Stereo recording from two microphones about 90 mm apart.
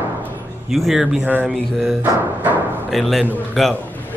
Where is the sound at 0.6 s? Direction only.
Centre (ahead or behind).